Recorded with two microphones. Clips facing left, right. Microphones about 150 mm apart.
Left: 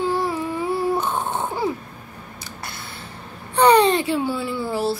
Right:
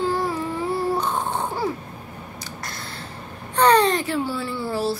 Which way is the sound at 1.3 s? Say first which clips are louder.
Left 1 dB; 20° left (ahead or behind).